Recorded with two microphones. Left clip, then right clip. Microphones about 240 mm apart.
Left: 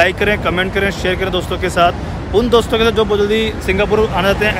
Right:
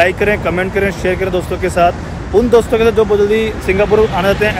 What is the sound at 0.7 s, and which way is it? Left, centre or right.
Speech, left.